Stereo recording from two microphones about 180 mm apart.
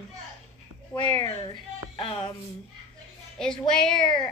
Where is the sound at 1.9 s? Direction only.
30° left (ahead or behind).